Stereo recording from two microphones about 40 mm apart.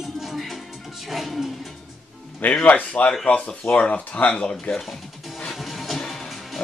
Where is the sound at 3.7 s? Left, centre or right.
Left.